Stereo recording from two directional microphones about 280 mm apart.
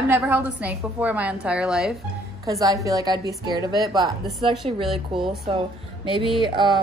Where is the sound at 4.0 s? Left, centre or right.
Centre.